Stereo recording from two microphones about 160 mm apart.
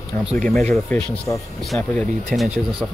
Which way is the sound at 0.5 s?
5° left (ahead or behind).